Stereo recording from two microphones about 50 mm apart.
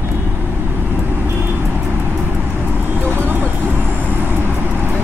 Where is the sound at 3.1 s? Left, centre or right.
Right.